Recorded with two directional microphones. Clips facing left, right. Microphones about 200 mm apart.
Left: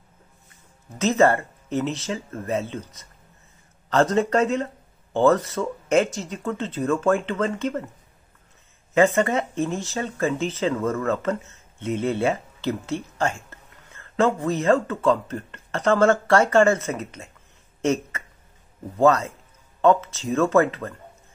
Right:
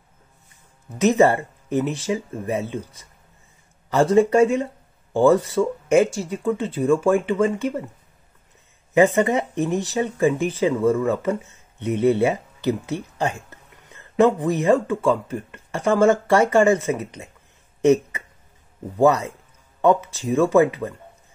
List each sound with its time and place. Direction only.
0.9 s speech: 15° right (ahead or behind)
8.9 s speech: 15° right (ahead or behind)